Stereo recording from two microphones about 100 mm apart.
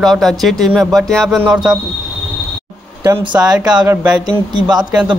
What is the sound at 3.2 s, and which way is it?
Speech, 45° right (ahead or behind).